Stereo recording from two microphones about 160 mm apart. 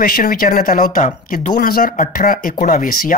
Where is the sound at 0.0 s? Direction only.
65° left (ahead or behind).